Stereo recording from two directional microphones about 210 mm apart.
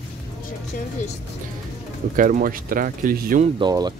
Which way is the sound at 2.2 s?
40° right (ahead or behind).